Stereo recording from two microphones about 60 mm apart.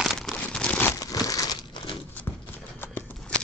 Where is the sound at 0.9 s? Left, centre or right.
Left.